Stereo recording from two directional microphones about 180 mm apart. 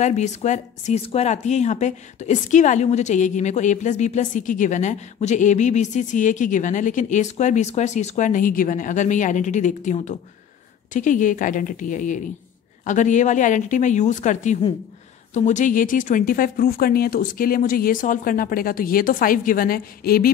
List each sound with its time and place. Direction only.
0.0 s speech: 40° left (ahead or behind); by 20.2 s 55° left (ahead or behind)